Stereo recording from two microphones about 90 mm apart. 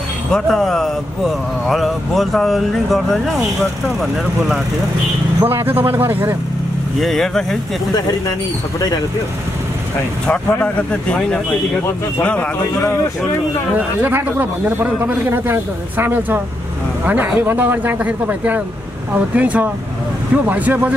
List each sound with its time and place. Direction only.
0.3 s speech: 5° left (ahead or behind)
5.4 s a man's voice: 25° right (ahead or behind)
7.0 s speech: 5° left (ahead or behind)
10.2 s speech: 10° left (ahead or behind)
13.7 s a man's voice: 20° right (ahead or behind)